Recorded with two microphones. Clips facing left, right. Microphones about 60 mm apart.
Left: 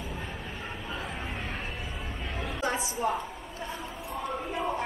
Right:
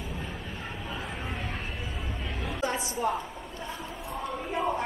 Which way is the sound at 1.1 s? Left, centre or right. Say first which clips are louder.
Right 1 dB; centre.